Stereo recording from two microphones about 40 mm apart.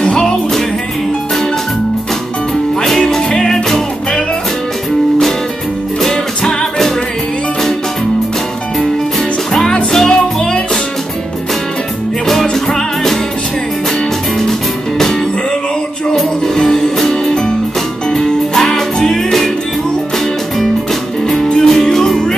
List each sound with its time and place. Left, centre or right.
0.0 s music: centre
3.3 s music: centre
6.0 s music: centre
9.5 s music: centre
12.3 s music: centre
16.5 s music: centre
21.3 s music: centre